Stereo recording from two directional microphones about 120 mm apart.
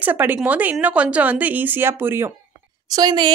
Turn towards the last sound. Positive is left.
turn(degrees=-35)  # may be behind; listen again after turning